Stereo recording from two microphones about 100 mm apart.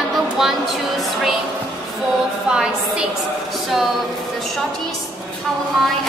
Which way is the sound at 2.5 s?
10° right (ahead or behind).